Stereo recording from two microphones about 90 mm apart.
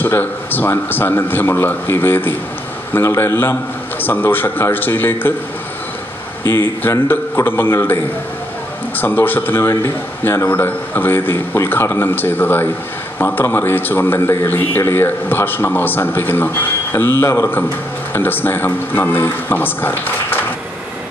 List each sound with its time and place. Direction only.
0.0 s a man's voice: 20° left (ahead or behind)
6.4 s speech: 30° left (ahead or behind)